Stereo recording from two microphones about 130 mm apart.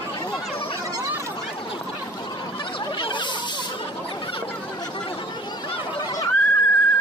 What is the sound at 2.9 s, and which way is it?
Snake, 40° left (ahead or behind).